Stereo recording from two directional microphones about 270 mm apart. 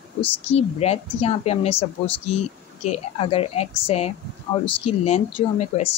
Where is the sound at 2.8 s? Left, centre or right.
Left.